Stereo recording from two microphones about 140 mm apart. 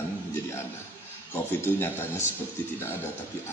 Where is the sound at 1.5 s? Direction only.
15° left (ahead or behind).